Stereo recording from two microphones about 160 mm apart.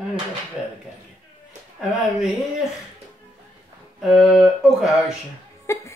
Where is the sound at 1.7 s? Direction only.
5° right (ahead or behind).